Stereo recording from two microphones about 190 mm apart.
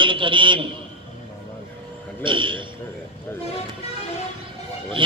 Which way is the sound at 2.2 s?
25° right (ahead or behind).